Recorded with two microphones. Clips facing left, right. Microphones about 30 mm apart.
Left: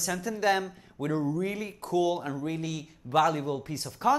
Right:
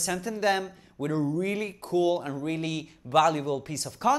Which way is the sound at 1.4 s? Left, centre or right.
Right.